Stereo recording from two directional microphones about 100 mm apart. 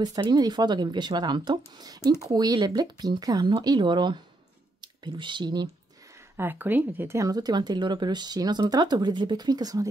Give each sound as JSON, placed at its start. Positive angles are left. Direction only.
{"t": 0.0, "sound": "speech", "side_deg": -45}
{"t": 6.3, "sound": "speech", "side_deg": -20}